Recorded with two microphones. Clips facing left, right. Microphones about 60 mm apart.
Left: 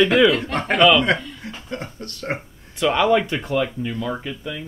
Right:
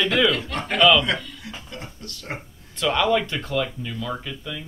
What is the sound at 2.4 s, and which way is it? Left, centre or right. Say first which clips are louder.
Speech: left 5 dB; centre.